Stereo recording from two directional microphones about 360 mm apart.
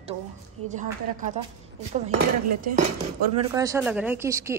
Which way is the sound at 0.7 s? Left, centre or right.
Right.